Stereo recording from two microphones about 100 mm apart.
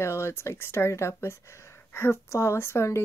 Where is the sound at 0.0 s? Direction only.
25° left (ahead or behind).